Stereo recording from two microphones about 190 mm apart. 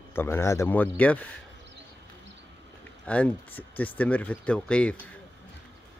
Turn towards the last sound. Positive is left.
turn(degrees=5)  # may be behind; listen again after turning